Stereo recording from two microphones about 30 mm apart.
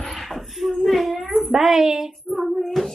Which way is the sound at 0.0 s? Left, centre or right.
Centre.